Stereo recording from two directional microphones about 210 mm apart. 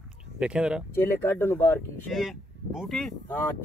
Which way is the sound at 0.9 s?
10° left (ahead or behind).